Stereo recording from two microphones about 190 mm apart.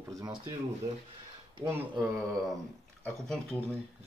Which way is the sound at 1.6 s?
10° right (ahead or behind).